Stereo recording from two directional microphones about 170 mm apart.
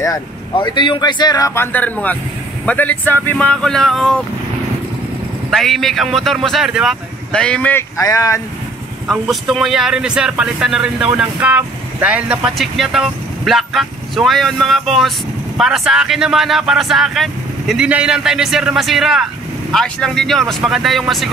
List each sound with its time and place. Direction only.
0.0 s speech: 20° left (ahead or behind); by 4.2 s centre (ahead or behind)
5.5 s speech: centre (ahead or behind)
8.0 s speech: 20° left (ahead or behind)
9.0 s speech: 5° right (ahead or behind)